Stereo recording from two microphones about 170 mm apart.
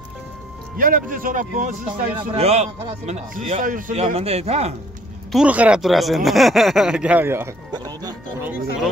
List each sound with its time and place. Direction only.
0.7 s speech: 55° right (ahead or behind)
2.1 s a man's voice: 35° right (ahead or behind)
5.3 s speech: 5° right (ahead or behind)
7.7 s music: 25° right (ahead or behind)